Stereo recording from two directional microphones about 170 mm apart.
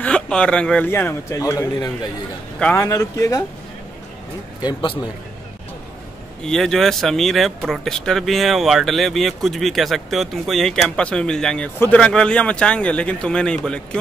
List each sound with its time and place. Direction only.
0.0 s a man's voice: 5° left (ahead or behind)
4.6 s speech: 25° left (ahead or behind)
6.4 s speech: 5° left (ahead or behind)